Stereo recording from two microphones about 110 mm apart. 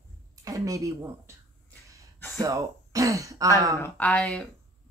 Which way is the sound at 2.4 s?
30° right (ahead or behind).